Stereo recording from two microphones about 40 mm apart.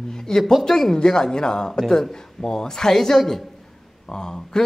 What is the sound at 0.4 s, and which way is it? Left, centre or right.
Speech, centre.